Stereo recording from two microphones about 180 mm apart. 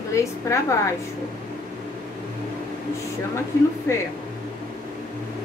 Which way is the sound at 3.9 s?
15° left (ahead or behind).